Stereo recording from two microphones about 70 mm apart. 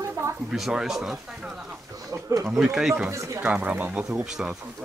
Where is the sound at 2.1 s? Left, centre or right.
Right.